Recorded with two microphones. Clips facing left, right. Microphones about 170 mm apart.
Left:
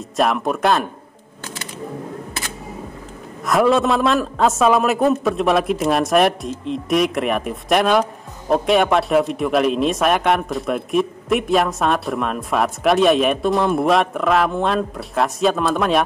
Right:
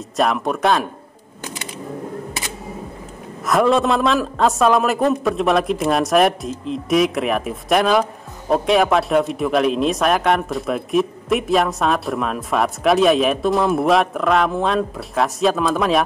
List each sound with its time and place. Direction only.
0.1 s a man's voice: centre (ahead or behind)
3.4 s a man's voice: centre (ahead or behind)